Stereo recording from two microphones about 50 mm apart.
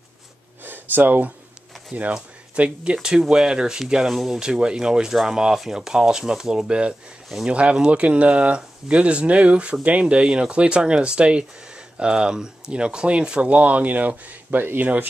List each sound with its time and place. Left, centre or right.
0.7 s gasp: right
2.5 s speech: right; by 4.4 s centre
4.4 s speech: centre; by 15.0 s right